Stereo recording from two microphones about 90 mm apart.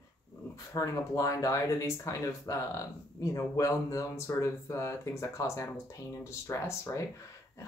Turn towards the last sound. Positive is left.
turn(degrees=30)  # may be behind; listen again after turning